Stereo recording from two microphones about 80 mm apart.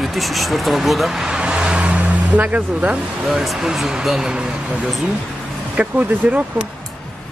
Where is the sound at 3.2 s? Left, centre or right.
Centre.